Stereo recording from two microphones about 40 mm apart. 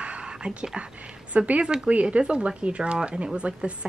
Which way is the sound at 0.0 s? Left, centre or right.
Right.